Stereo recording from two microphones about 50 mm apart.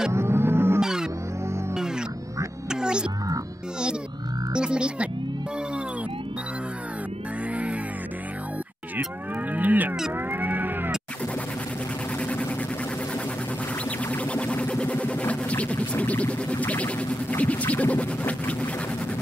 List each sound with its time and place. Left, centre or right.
0.1 s music: right
0.7 s music: centre
2.7 s music: centre
4.6 s speech: centre
9.5 s cattle: right
10.3 s cat: right
14.1 s music: left